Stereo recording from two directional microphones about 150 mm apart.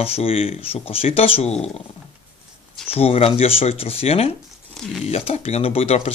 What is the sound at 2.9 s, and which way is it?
Speech, 40° left (ahead or behind).